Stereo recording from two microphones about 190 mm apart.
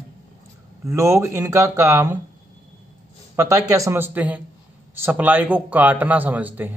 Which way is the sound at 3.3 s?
15° right (ahead or behind).